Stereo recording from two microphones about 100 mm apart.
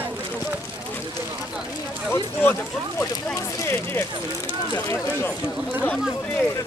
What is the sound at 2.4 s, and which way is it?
Speech, 25° left (ahead or behind).